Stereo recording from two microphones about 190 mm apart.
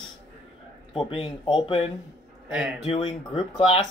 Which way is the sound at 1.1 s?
30° left (ahead or behind).